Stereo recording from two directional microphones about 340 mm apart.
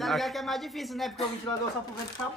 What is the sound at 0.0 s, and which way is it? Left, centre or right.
Speech, centre.